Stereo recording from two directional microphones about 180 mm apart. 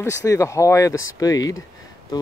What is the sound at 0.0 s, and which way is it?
Speech, 15° left (ahead or behind).